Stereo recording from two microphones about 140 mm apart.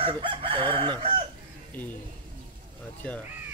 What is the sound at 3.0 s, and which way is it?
Speech, 10° left (ahead or behind).